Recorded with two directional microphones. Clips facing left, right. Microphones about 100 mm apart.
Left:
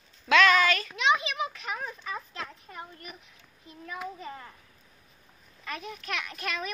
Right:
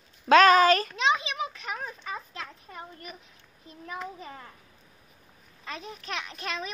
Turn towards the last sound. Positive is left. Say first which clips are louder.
# even
turn(degrees=-30)  # may be behind; listen again after turning